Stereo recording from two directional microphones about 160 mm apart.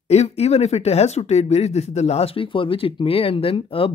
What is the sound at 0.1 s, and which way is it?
Speech, 40° left (ahead or behind).